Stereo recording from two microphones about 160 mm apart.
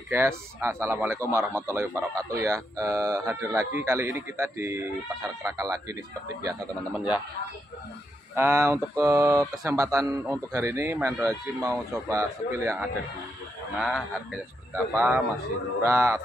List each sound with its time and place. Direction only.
0.1 s a man's voice: 15° right (ahead or behind)
8.4 s a man's voice: 15° right (ahead or behind)
13.7 s a man's voice: centre (ahead or behind)